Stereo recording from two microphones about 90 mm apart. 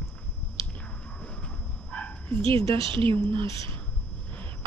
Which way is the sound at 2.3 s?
80° right.